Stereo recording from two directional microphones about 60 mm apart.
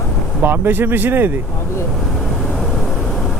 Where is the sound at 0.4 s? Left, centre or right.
Right.